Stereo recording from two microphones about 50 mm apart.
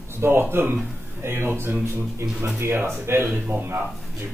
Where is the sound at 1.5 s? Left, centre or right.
Right.